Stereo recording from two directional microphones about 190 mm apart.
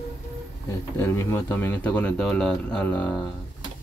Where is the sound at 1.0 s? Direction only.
15° left (ahead or behind).